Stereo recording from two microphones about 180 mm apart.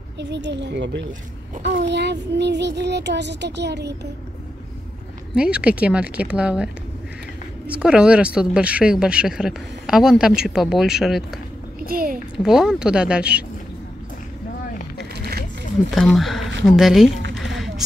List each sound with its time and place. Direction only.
0.2 s child singing: 75° right (ahead or behind)
5.3 s a woman's voice: 5° right (ahead or behind)
11.8 s a sound: 55° right (ahead or behind)
12.4 s speech: 5° right (ahead or behind)
15.1 s wild animals: 65° right (ahead or behind)
15.9 s speech: centre (ahead or behind)